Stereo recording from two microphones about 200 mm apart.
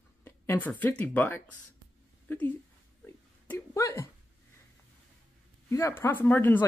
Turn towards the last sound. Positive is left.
turn(degrees=10)  # may be behind; listen again after turning